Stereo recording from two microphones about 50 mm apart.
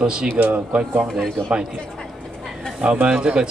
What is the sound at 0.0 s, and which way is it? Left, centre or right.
Speech, centre.